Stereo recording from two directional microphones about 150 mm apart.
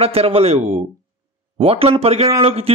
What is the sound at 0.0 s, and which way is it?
A man's voice, 40° right (ahead or behind).